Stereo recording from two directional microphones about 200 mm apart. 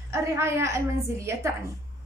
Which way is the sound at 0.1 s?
15° right (ahead or behind).